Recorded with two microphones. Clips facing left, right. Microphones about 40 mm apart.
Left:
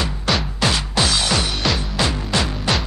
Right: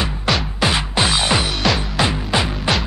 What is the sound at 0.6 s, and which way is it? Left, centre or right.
Music, right.